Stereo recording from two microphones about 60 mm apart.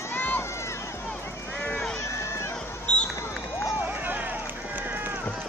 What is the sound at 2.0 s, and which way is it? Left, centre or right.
Run, left.